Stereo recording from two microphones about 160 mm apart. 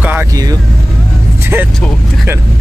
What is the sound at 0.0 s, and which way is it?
Vehicle, 10° right (ahead or behind).